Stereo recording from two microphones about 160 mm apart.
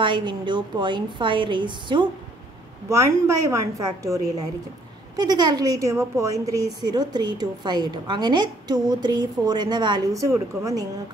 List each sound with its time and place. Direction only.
0.0 s a woman's voice: 30° right (ahead or behind)
2.9 s a woman's voice: 20° right (ahead or behind)